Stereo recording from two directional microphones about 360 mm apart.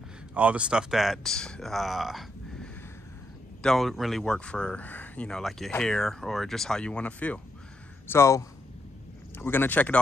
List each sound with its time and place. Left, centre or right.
0.3 s a man's voice: centre